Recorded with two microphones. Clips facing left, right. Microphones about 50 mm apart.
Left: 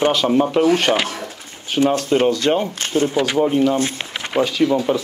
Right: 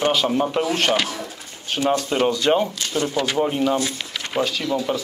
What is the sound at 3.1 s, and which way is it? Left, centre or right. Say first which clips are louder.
Speech: left 4 dB; centre.